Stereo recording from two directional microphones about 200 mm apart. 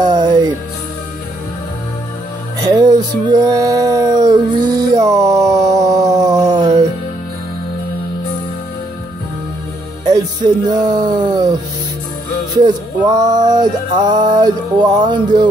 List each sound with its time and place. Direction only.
0.0 s music: 20° right (ahead or behind)
2.6 s music: 20° right (ahead or behind)
10.0 s music: 20° right (ahead or behind)
12.5 s music: 20° right (ahead or behind)